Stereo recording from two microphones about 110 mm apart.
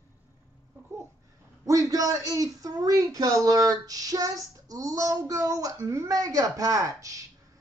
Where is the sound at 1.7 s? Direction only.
35° right (ahead or behind).